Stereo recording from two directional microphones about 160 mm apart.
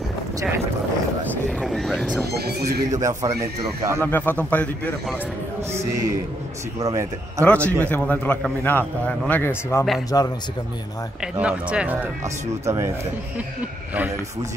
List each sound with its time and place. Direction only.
1.6 s a sound: centre (ahead or behind)
2.3 s speech: 90° right
2.9 s speech: 20° right (ahead or behind)
4.0 s a man's voice: 10° left (ahead or behind)
5.7 s speech: 15° right (ahead or behind)
7.4 s a man's voice: 10° left (ahead or behind)
11.3 s speech: 5° right (ahead or behind)